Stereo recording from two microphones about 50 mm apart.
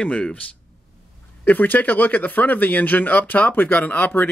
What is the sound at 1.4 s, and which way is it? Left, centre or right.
A man's voice, left.